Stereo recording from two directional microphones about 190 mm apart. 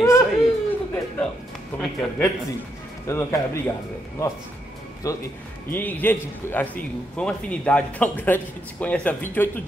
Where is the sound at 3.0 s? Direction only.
15° left (ahead or behind).